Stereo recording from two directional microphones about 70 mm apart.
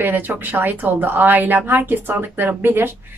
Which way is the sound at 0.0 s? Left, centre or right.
Right.